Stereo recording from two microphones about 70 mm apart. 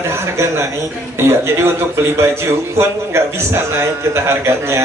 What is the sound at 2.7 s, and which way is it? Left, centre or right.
A man's voice, right.